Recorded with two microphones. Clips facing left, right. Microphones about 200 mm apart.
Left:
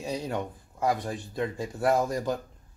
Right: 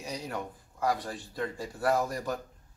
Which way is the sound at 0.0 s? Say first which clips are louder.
Left 5 dB; 25° left (ahead or behind).